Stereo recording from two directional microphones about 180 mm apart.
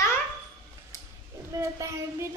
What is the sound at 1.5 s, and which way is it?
Speech, 20° right (ahead or behind).